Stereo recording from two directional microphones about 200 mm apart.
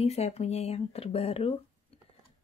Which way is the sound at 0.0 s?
30° left (ahead or behind).